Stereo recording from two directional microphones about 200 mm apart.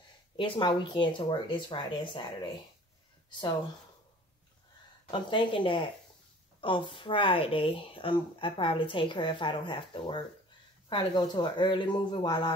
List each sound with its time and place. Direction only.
0.4 s speech: 25° left (ahead or behind)
5.1 s speech: 25° left (ahead or behind)